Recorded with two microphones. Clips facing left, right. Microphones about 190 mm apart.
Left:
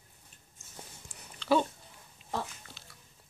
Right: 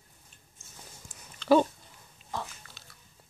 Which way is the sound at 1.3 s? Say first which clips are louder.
Right 5 dB; 45° right (ahead or behind).